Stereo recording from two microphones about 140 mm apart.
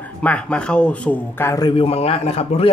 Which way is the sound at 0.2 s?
10° left (ahead or behind).